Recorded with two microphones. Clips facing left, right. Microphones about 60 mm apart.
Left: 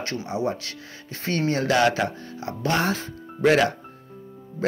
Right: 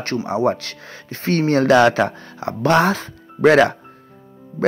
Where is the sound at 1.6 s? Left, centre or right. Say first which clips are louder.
Right 7 dB; right.